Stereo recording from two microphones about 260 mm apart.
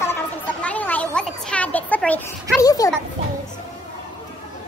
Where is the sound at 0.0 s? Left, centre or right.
Centre.